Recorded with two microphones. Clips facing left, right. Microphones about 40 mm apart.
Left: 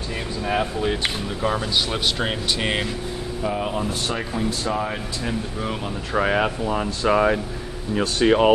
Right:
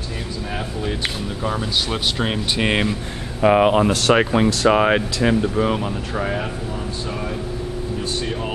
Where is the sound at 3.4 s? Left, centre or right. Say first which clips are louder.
Right 11 dB; right.